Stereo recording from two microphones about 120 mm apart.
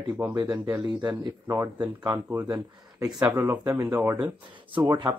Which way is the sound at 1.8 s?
35° right (ahead or behind).